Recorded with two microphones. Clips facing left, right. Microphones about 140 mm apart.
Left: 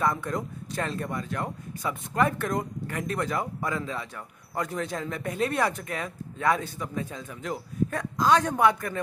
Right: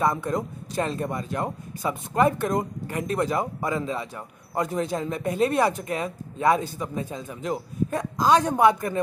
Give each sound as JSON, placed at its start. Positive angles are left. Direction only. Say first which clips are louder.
{"t": 0.0, "sound": "speech", "louder": "right 3 dB", "side_deg": -20}